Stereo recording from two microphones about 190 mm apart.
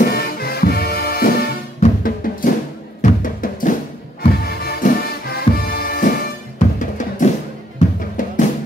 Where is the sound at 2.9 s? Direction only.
45° left (ahead or behind).